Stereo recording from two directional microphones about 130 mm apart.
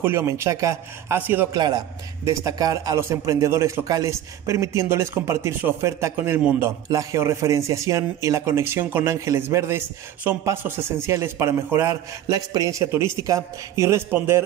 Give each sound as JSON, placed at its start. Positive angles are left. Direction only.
{"t": 0.0, "sound": "a man's voice", "side_deg": -20}
{"t": 1.5, "sound": "a man's voice", "side_deg": -30}